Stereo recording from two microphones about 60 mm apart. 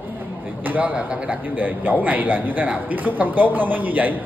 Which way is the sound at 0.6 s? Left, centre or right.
Right.